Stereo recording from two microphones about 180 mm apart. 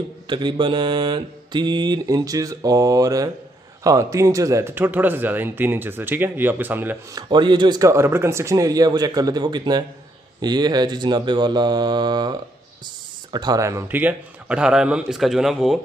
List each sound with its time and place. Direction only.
0.3 s mantra: 25° right (ahead or behind)
3.8 s a man's voice: 20° right (ahead or behind)
7.2 s mantra: 25° right (ahead or behind)
12.8 s speech: 25° right (ahead or behind); by 15.8 s centre (ahead or behind)